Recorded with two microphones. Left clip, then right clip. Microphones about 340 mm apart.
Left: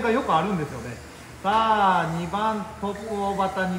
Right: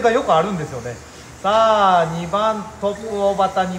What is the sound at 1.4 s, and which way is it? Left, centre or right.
Speech, right.